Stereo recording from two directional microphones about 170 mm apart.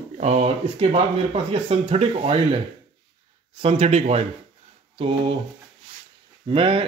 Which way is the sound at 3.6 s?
35° right (ahead or behind).